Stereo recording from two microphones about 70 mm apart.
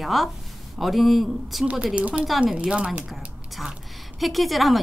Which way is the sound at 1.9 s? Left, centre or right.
Centre.